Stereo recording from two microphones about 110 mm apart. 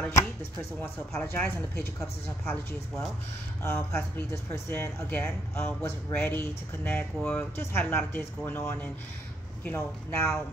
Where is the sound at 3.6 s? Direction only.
20° left (ahead or behind).